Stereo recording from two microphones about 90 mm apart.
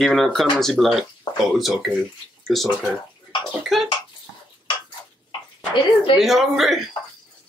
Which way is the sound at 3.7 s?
Centre (ahead or behind).